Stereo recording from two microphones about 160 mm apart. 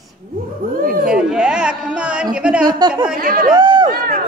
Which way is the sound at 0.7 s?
65° right (ahead or behind).